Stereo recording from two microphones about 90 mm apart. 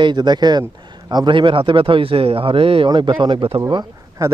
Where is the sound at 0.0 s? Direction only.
55° right (ahead or behind); by 2.9 s 90° right.